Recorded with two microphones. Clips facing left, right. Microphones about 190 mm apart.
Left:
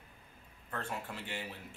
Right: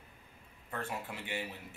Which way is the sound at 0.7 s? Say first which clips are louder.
Right 1 dB; 10° right (ahead or behind).